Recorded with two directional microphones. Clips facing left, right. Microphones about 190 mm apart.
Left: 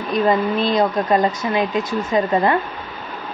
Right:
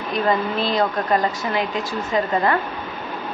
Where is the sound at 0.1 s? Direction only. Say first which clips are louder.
Left 4 dB; 20° left (ahead or behind).